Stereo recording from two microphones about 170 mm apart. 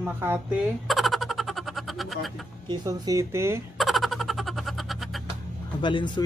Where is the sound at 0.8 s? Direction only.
Centre (ahead or behind).